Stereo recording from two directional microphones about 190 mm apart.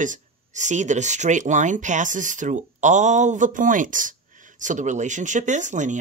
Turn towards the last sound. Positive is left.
turn(degrees=-40)  # may be behind; listen again after turning